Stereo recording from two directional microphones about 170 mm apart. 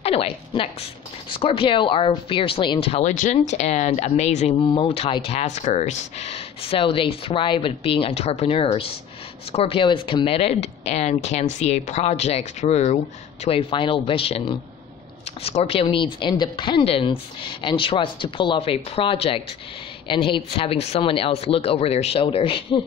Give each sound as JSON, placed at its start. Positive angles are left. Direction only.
{"t": 0.0, "sound": "a sound", "side_deg": 35}
{"t": 1.3, "sound": "speech", "side_deg": 30}
{"t": 15.4, "sound": "a woman's voice", "side_deg": 35}